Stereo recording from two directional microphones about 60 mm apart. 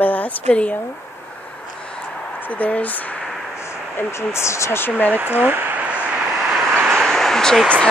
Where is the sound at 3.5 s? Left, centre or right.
Left.